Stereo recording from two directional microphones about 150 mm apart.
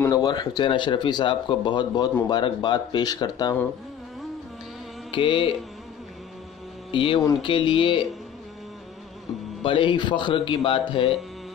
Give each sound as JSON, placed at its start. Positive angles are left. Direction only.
{"t": 0.1, "sound": "speech", "side_deg": 25}
{"t": 5.1, "sound": "speech", "side_deg": 35}
{"t": 6.9, "sound": "speech", "side_deg": 35}
{"t": 9.6, "sound": "speech", "side_deg": 35}